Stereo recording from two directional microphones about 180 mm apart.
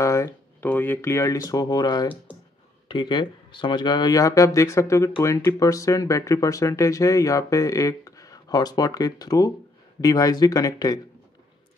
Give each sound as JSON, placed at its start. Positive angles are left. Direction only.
{"t": 0.0, "sound": "speech", "side_deg": 15}